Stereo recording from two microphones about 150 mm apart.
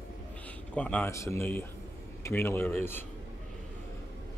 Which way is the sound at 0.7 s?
10° left (ahead or behind).